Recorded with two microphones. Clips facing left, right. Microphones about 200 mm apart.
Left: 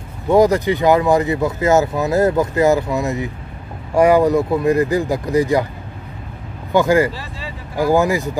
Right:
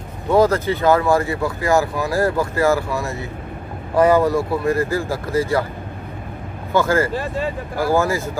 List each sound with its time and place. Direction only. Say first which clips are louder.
0.3 s speech: left 3 dB; 15° left (ahead or behind)
6.7 s speech: left 3 dB; 15° left (ahead or behind)
7.1 s speech: right 7 dB; 50° right (ahead or behind)
7.7 s speech: left 4 dB; 15° left (ahead or behind)